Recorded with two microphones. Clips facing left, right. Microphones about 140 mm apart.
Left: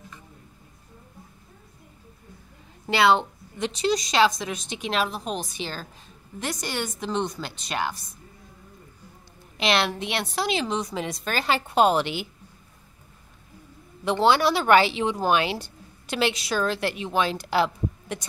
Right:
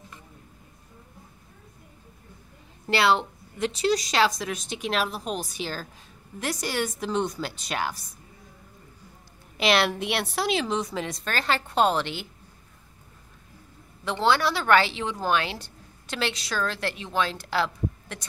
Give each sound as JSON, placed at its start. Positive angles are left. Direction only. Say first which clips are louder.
{"t": 3.5, "sound": "a woman's voice", "louder": "even", "side_deg": -5}
{"t": 9.6, "sound": "a woman's voice", "louder": "right 1 dB", "side_deg": -5}
{"t": 14.2, "sound": "a woman's voice", "louder": "left 3 dB", "side_deg": 15}